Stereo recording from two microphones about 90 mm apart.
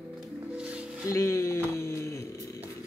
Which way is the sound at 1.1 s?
30° left (ahead or behind).